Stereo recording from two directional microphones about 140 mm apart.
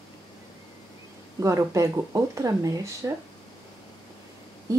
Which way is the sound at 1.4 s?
20° right (ahead or behind).